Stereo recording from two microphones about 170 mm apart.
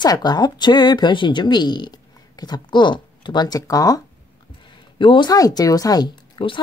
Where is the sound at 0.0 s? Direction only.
25° left (ahead or behind).